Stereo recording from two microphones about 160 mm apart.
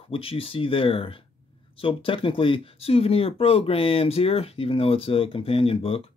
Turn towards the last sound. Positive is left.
turn(degrees=35)  # may be behind; listen again after turning